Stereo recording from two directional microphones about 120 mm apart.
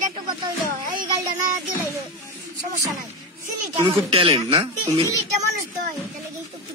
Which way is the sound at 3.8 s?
50° right (ahead or behind).